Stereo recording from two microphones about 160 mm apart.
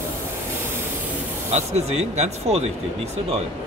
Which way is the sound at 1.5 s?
40° right (ahead or behind).